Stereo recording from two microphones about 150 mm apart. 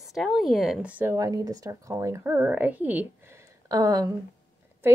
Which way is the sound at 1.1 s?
25° right (ahead or behind).